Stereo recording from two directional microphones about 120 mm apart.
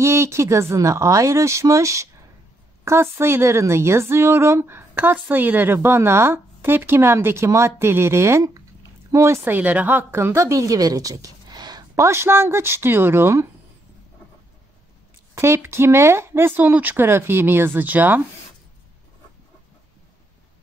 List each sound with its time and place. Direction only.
0.0 s a woman's voice: 25° right (ahead or behind)
15.3 s a woman's voice: 20° right (ahead or behind)